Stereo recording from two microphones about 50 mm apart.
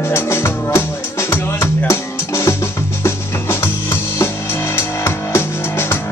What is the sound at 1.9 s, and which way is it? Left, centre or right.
Music, left.